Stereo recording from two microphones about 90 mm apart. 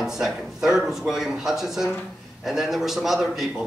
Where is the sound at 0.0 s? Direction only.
5° right (ahead or behind).